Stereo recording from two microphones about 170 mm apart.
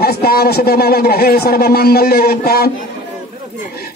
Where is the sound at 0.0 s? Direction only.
65° left (ahead or behind).